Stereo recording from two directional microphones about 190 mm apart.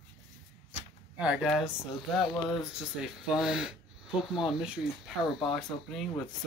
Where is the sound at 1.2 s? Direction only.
5° right (ahead or behind).